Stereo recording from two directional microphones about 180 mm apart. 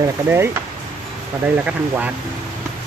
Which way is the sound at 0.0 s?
15° right (ahead or behind).